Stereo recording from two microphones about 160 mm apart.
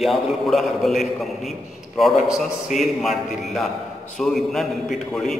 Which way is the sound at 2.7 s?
50° left (ahead or behind).